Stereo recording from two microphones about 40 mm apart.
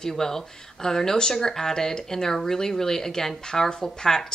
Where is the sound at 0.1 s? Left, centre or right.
Centre.